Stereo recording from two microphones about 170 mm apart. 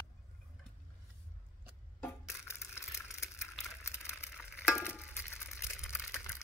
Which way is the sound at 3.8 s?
15° left (ahead or behind).